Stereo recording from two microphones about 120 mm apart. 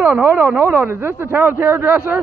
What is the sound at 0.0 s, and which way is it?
Speech, 10° right (ahead or behind).